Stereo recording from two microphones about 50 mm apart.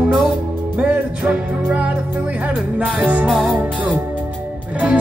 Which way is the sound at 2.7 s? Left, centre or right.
Right.